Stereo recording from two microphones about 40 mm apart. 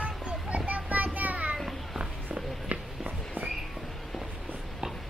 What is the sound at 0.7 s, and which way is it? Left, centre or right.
Child singing, right.